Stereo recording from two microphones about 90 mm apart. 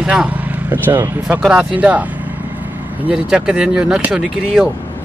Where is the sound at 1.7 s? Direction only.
15° right (ahead or behind).